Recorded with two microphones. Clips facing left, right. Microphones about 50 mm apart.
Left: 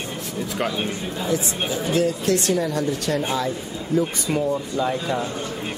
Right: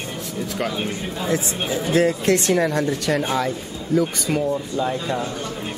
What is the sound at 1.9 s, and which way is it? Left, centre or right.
Speech, right.